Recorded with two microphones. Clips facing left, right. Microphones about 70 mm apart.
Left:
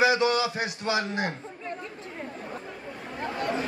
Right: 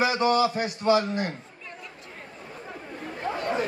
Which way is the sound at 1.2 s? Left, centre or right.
Left.